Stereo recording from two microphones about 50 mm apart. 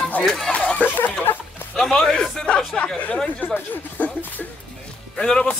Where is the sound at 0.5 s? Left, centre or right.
Left.